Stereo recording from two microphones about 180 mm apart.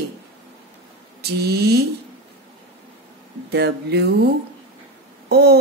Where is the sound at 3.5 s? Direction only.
70° right (ahead or behind).